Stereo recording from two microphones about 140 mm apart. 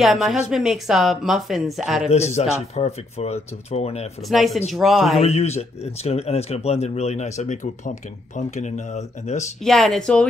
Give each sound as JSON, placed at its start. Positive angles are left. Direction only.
{"t": 0.0, "sound": "speech", "side_deg": 0}
{"t": 2.0, "sound": "speech", "side_deg": 50}
{"t": 4.3, "sound": "speech", "side_deg": 0}
{"t": 5.2, "sound": "speech", "side_deg": 50}
{"t": 9.6, "sound": "speech", "side_deg": 0}